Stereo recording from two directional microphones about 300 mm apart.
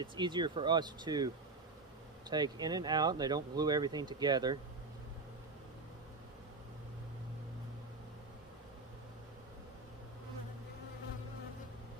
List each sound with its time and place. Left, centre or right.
0.0 s speech: centre